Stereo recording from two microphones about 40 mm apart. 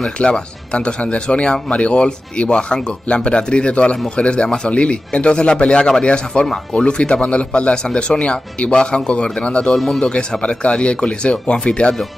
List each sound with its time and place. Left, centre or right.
0.2 s speech: left
9.8 s speech: centre
10.0 s speech: left